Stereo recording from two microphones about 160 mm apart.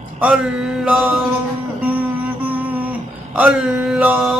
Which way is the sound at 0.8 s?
10° right (ahead or behind).